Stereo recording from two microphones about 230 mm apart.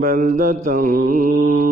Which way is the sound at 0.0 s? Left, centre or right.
Right.